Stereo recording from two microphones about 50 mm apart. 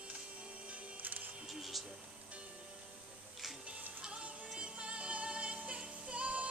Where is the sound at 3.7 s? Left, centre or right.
Right.